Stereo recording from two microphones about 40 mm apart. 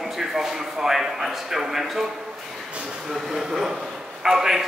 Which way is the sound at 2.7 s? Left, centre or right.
Right.